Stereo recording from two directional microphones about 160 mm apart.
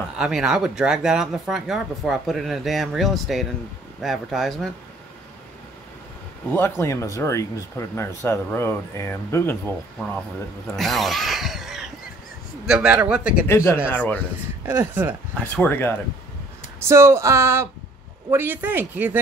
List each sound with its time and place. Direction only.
0.2 s speech: 5° right (ahead or behind)
6.5 s speech: 15° left (ahead or behind)
10.8 s speech: centre (ahead or behind)
13.5 s speech: 15° left (ahead or behind)
14.7 s speech: 10° right (ahead or behind)
15.3 s speech: 10° left (ahead or behind)
16.8 s speech: 15° right (ahead or behind)